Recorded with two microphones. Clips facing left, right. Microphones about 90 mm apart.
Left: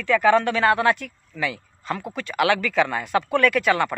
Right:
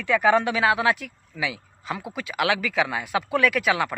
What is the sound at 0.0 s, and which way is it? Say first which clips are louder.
Speech: left 2 dB; 15° right (ahead or behind).